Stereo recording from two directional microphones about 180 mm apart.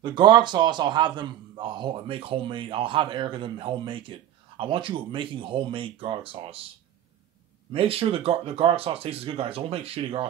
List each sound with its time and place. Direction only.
0.0 s a man's voice: 25° right (ahead or behind)
7.7 s speech: 30° right (ahead or behind)